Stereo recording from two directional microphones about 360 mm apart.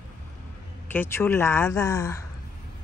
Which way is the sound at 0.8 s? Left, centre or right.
Centre.